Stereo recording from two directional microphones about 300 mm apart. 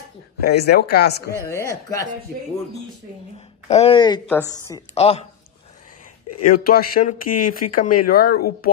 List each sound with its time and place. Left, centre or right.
0.4 s speech: left
1.4 s speech: centre
3.3 s a woman's voice: left
6.5 s a woman's voice: left